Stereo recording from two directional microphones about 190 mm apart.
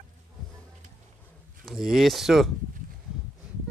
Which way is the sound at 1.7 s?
Centre (ahead or behind).